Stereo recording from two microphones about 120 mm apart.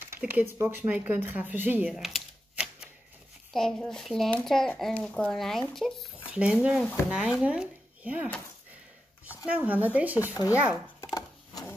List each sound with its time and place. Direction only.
0.2 s speech: 15° right (ahead or behind)
2.0 s typewriter: centre (ahead or behind)
3.5 s speech: 5° left (ahead or behind)
9.5 s speech: 15° right (ahead or behind)
10.1 s speech: 25° left (ahead or behind)